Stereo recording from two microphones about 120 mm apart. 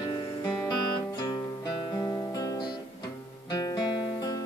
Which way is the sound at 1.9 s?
35° left (ahead or behind).